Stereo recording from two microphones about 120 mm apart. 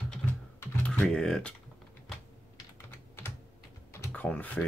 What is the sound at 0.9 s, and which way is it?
Speech, 5° left (ahead or behind).